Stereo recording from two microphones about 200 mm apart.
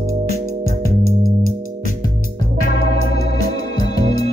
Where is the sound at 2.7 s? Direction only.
45° left (ahead or behind).